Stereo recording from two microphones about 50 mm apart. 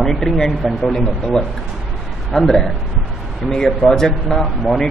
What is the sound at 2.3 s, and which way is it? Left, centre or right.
A man's voice, centre.